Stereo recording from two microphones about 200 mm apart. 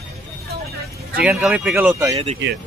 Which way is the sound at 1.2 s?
5° right (ahead or behind).